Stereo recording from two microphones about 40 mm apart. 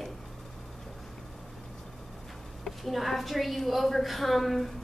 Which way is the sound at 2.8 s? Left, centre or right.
Centre.